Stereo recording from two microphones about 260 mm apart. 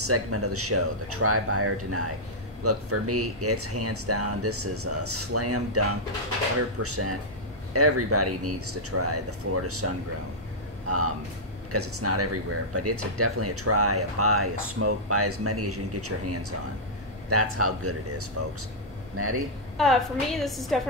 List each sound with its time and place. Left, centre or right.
0.0 s speech: right
11.7 s speech: right
19.8 s a woman's voice: centre